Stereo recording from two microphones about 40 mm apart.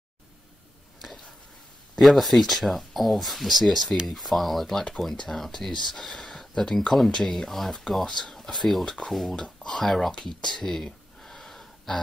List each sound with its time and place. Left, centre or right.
2.0 s speech: centre
3.8 s speech: centre
4.1 s speech: centre
9.6 s a sound: centre
9.8 s speech: centre
10.2 s a sound: centre